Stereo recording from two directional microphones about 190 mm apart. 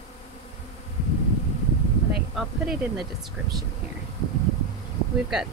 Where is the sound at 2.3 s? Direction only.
Centre (ahead or behind).